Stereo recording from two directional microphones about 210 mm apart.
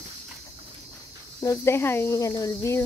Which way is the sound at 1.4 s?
15° left (ahead or behind).